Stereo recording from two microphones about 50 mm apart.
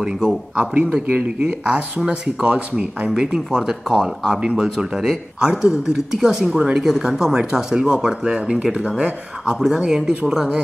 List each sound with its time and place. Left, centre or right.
0.0 s speech: centre
0.6 s a man's voice: right
9.5 s speech: centre
9.8 s speech: centre